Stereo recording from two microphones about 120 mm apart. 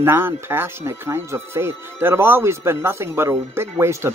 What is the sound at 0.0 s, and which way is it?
Speech, 20° right (ahead or behind).